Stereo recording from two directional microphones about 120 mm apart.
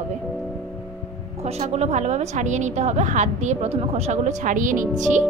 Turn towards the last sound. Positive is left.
turn(degrees=-90)